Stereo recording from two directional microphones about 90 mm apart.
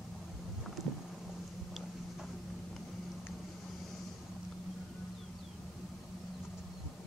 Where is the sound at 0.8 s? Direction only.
Centre (ahead or behind).